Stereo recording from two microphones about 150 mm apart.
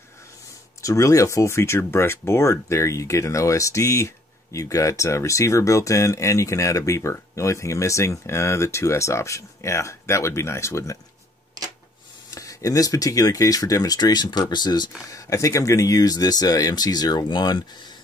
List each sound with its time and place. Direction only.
0.8 s speech: 20° left (ahead or behind)
12.4 s speech: 20° left (ahead or behind)